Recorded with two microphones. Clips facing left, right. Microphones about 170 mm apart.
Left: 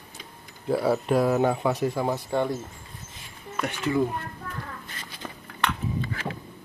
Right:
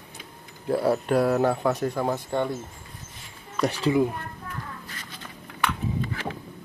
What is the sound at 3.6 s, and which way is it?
Speech, 35° right (ahead or behind).